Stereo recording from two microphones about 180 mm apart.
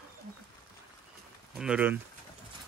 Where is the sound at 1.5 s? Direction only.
5° right (ahead or behind).